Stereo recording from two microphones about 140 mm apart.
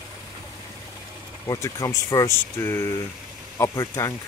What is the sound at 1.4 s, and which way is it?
Speech, 25° left (ahead or behind).